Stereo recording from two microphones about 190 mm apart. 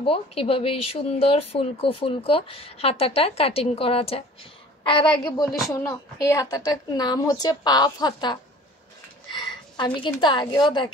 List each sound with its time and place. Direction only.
0.0 s a woman's voice: 30° left (ahead or behind)